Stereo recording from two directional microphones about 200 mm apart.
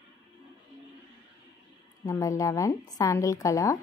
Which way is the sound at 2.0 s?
15° left (ahead or behind).